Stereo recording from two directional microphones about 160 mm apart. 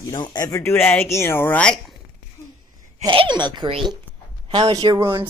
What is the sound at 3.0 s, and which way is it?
Speech, 30° right (ahead or behind).